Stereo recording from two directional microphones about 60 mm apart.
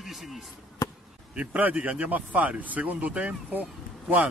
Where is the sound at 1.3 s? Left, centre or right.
Right.